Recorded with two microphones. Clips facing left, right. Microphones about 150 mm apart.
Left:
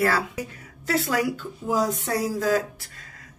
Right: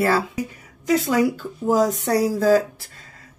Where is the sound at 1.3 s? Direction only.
40° right (ahead or behind).